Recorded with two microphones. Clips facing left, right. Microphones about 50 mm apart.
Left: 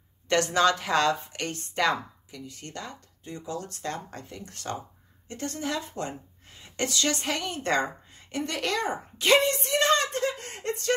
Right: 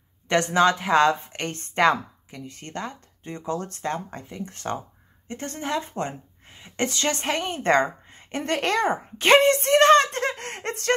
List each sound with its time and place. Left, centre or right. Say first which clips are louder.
0.3 s a woman's voice: right 3 dB; right